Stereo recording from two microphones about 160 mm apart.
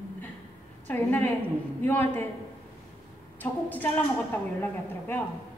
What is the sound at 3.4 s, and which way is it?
Speech, 10° left (ahead or behind).